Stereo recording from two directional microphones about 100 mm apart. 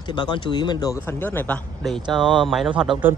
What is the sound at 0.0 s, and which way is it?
Speech, 50° left (ahead or behind).